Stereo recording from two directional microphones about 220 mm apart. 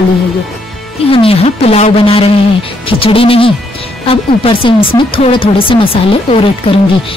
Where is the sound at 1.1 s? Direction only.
25° left (ahead or behind).